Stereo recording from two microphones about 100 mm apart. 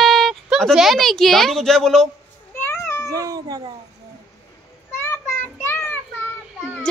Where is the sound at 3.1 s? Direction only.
35° right (ahead or behind).